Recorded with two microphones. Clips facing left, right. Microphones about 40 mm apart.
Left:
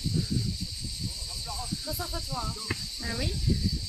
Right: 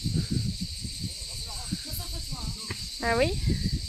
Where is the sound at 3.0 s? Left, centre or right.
Right.